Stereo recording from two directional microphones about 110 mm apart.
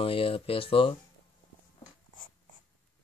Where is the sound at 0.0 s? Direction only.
55° left (ahead or behind).